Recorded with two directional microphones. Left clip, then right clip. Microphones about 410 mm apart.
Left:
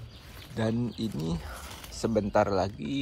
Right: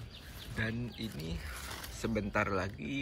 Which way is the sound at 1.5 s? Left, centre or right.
Centre.